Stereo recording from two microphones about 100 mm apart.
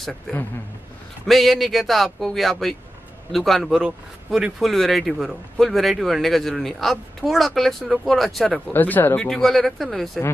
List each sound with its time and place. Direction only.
1.2 s speech: centre (ahead or behind)
8.7 s speech: 20° left (ahead or behind)
9.3 s speech: centre (ahead or behind)